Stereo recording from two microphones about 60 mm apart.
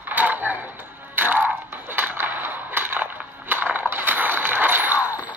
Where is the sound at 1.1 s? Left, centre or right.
Right.